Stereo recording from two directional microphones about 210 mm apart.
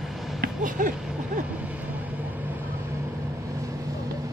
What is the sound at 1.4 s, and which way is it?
Vehicle, 5° right (ahead or behind).